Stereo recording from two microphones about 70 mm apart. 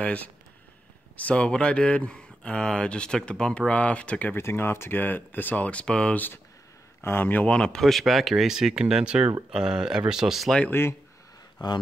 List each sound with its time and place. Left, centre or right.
0.0 s speech: centre
4.4 s speech: left; by 6.1 s centre
6.1 s speech: left
7.4 s speech: centre
10.7 s speech: left